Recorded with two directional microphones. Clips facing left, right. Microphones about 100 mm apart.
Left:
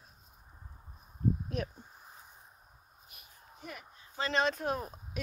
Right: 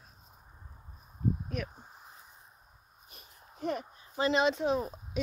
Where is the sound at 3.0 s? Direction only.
35° right (ahead or behind).